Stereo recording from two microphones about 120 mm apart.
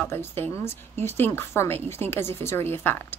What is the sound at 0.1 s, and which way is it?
A woman's voice, 20° left (ahead or behind).